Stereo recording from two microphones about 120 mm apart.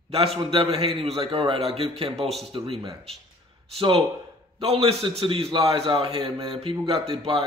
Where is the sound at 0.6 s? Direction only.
50° right (ahead or behind).